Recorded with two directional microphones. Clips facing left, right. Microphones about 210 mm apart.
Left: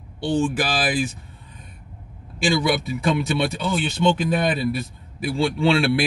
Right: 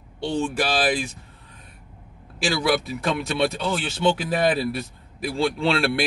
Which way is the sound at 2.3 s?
Centre (ahead or behind).